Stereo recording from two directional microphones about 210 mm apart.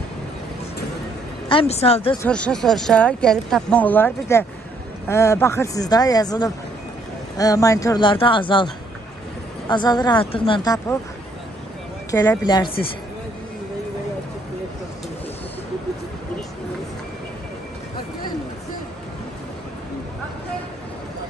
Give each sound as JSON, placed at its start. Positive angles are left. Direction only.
{"t": 1.5, "sound": "speech", "side_deg": 25}
{"t": 2.2, "sound": "speech", "side_deg": 5}
{"t": 9.7, "sound": "speech", "side_deg": 20}
{"t": 12.1, "sound": "speech", "side_deg": 15}